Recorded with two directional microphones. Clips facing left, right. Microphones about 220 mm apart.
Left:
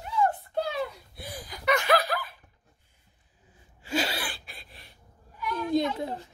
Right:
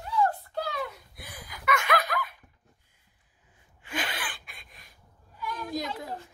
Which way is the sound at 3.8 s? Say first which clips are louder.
Left 6 dB; 30° left (ahead or behind).